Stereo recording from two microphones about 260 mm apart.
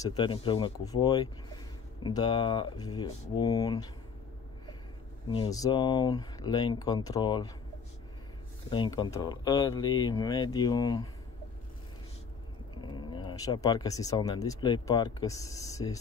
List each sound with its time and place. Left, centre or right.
0.0 s speech: centre
5.3 s speech: centre
8.6 s speech: centre
12.8 s speech: centre